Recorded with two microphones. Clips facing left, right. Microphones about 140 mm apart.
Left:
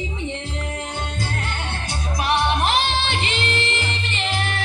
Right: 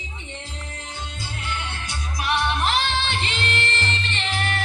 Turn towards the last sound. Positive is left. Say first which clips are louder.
# left 2 dB
turn(degrees=0)  # may be behind; listen again after turning